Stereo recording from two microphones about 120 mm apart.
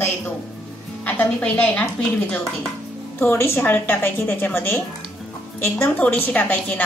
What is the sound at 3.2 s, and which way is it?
A woman's voice, 20° left (ahead or behind).